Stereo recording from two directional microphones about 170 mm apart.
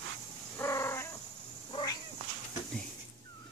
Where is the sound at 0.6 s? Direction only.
15° left (ahead or behind).